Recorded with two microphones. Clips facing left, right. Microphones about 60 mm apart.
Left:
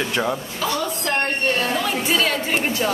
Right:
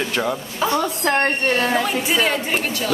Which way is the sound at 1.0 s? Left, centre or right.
Right.